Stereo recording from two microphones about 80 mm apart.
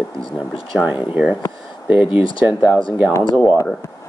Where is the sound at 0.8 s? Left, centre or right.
Centre.